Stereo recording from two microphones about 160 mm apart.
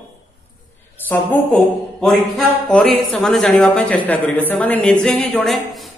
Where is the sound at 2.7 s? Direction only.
5° left (ahead or behind).